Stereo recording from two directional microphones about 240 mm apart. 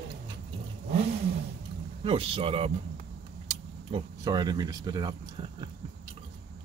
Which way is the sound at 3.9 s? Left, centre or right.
Right.